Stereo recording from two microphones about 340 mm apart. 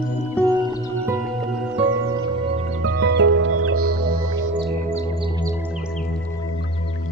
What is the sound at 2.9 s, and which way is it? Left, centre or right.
Music, right.